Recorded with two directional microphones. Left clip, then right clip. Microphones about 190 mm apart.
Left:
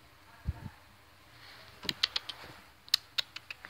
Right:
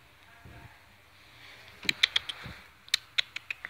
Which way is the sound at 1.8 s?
10° right (ahead or behind).